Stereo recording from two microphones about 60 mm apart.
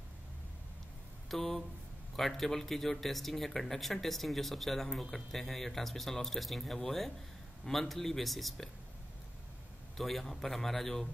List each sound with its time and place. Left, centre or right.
1.3 s speech: centre
9.9 s speech: centre